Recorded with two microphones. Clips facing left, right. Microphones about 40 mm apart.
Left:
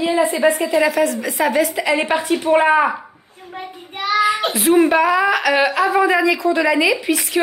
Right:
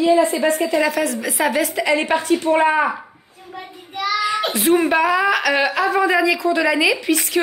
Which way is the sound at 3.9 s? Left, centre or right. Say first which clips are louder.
Left 3 dB; left.